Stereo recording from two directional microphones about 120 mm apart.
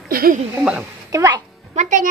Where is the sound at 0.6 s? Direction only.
10° right (ahead or behind).